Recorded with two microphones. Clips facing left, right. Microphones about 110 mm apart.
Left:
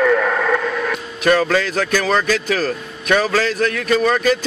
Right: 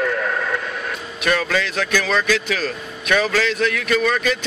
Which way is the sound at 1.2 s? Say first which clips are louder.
Left 5 dB; 35° left (ahead or behind).